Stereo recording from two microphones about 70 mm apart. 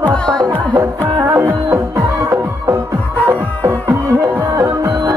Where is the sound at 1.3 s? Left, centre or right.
Right.